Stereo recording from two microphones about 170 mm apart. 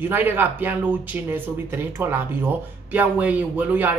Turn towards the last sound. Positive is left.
turn(degrees=-10)  # may be behind; listen again after turning